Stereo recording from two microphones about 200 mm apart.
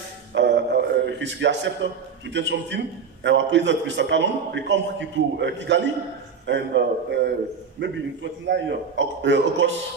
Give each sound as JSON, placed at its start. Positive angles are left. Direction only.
{"t": 0.3, "sound": "music", "side_deg": -60}
{"t": 2.3, "sound": "a man's voice", "side_deg": -65}